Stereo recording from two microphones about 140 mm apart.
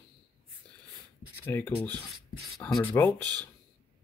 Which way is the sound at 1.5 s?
15° left (ahead or behind).